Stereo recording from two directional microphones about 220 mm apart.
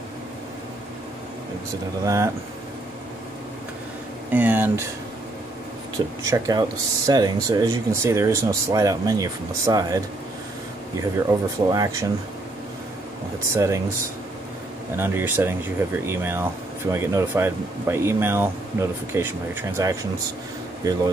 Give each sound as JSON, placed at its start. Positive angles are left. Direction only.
{"t": 2.0, "sound": "speech", "side_deg": -15}
{"t": 4.3, "sound": "speech", "side_deg": -10}
{"t": 6.2, "sound": "speech", "side_deg": -15}
{"t": 13.5, "sound": "speech", "side_deg": -15}
{"t": 15.0, "sound": "speech", "side_deg": -10}